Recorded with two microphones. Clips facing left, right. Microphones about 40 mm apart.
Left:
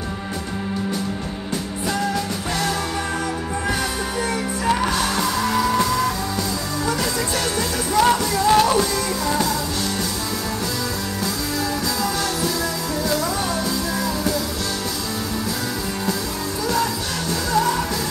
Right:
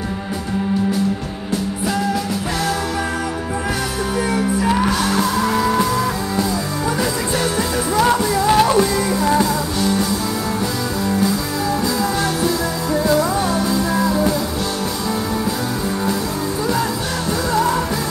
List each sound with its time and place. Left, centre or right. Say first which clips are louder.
4.2 s music: right 6 dB; centre
7.9 s music: right 1 dB; centre
12.9 s music: right 8 dB; right
17.5 s music: right 1 dB; right